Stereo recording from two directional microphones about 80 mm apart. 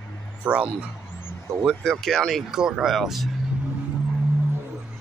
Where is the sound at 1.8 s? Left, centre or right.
Centre.